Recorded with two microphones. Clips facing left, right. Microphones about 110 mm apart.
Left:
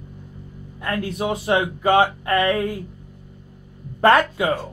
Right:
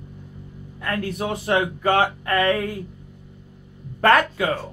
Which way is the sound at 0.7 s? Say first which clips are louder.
Left 1 dB; 20° left (ahead or behind).